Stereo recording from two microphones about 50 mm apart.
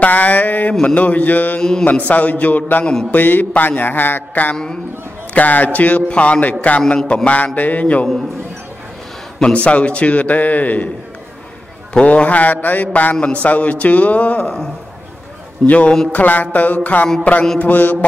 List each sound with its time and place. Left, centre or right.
0.0 s a sound: left
0.8 s music: left
1.6 s mantra: centre
1.9 s music: left
7.2 s a man's voice: left
9.4 s a man's voice: left
11.9 s a man's voice: left
15.6 s music: left
17.2 s a man's voice: left
17.6 s music: left